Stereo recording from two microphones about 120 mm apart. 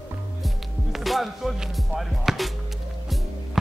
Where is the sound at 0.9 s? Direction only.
Centre (ahead or behind).